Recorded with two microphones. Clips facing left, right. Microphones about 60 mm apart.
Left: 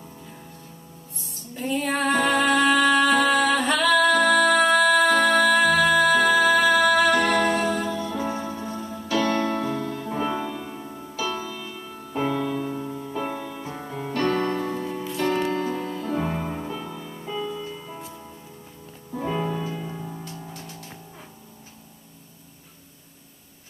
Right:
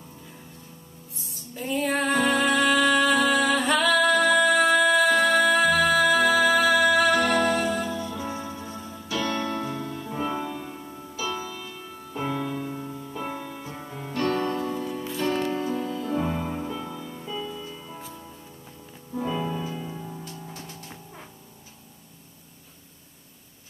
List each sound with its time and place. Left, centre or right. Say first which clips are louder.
1.7 s music: left 1 dB; centre
7.2 s music: left 1 dB; left
9.0 s music: left 5 dB; left
12.8 s music: left 4 dB; left
13.4 s music: left 3 dB; left
15.4 s music: left 2 dB; left
15.7 s music: even; left
16.6 s music: even; left
19.2 s music: left 3 dB; left
19.7 s music: left 2 dB; left